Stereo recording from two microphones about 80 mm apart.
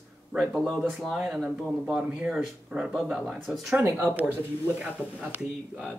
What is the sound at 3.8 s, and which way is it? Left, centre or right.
Speech, right.